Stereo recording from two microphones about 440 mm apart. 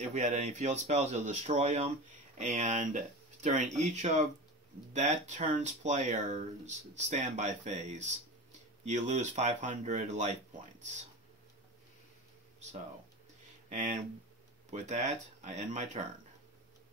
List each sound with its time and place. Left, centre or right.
0.0 s speech: centre
13.7 s speech: centre